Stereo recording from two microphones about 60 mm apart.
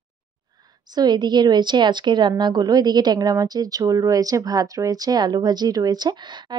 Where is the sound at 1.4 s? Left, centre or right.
Right.